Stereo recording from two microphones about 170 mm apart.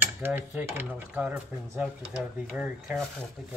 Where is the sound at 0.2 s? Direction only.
10° right (ahead or behind).